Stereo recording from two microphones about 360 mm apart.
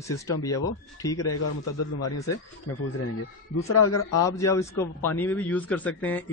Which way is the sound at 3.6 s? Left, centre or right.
Left.